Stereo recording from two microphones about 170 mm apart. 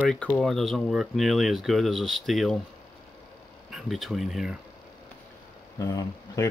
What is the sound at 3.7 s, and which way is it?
Speech, centre (ahead or behind).